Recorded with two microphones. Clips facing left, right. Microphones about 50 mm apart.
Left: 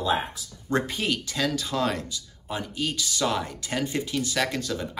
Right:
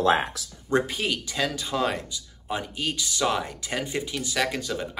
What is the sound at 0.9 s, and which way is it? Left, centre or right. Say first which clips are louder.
Speech: even; centre.